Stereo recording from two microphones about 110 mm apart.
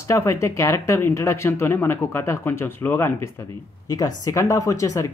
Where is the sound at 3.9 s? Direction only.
35° left (ahead or behind).